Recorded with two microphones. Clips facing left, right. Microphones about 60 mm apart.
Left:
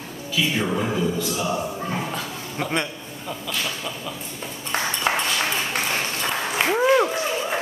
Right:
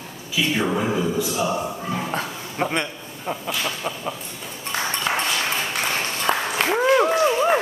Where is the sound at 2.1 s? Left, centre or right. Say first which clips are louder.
Right 2 dB; right.